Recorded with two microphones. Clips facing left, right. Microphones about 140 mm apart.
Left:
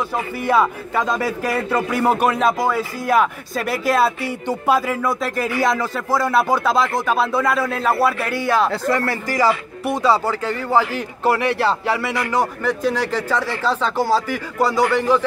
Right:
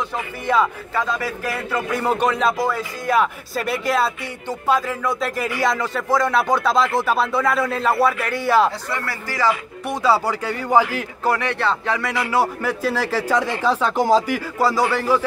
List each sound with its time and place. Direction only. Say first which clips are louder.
0.4 s a man's voice: left 2 dB; 10° left (ahead or behind)
8.8 s speech: left 8 dB; 50° left (ahead or behind)
9.1 s a man's voice: left 4 dB; 15° left (ahead or behind)
9.8 s a man's voice: left 1 dB; centre (ahead or behind)
11.2 s a man's voice: left 3 dB; 5° left (ahead or behind)
12.3 s a man's voice: right 1 dB; 10° right (ahead or behind)
13.4 s a man's voice: right 1 dB; 15° right (ahead or behind)